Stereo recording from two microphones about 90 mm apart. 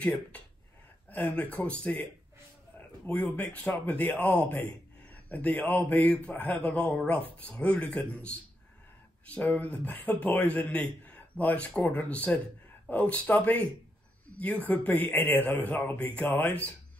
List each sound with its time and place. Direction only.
0.0 s a man's voice: 15° left (ahead or behind)
3.1 s a man's voice: 15° left (ahead or behind)
14.3 s a sound: 15° left (ahead or behind)
14.7 s a man's voice: 15° left (ahead or behind)